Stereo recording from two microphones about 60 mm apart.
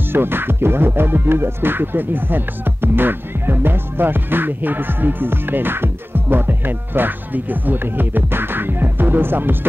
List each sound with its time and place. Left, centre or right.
0.1 s speech: right